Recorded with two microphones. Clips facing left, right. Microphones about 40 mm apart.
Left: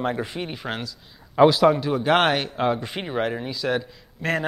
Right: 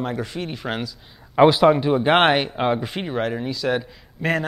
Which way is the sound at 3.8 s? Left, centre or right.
Centre.